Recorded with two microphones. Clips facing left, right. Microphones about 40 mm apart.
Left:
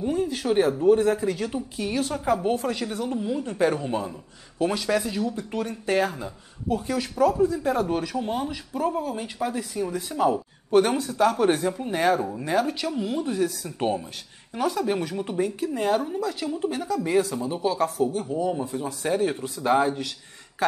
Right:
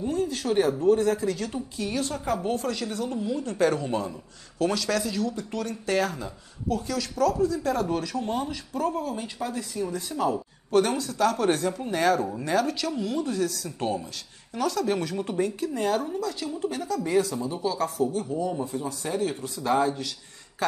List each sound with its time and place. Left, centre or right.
0.0 s speech: centre
17.4 s speech: left